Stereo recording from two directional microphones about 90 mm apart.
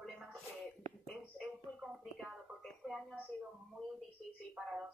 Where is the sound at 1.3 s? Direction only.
Centre (ahead or behind).